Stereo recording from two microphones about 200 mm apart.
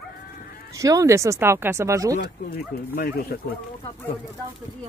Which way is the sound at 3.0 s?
50° left (ahead or behind).